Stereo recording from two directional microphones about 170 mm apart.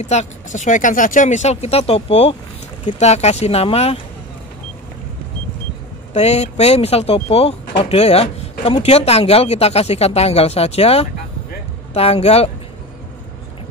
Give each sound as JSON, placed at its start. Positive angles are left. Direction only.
{"t": 0.0, "sound": "speech", "side_deg": 40}
{"t": 6.1, "sound": "speech", "side_deg": 40}